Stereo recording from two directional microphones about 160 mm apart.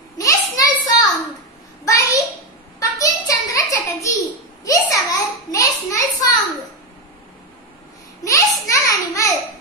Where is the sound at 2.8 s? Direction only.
20° left (ahead or behind).